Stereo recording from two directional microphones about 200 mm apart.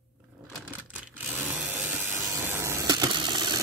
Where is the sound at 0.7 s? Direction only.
10° right (ahead or behind).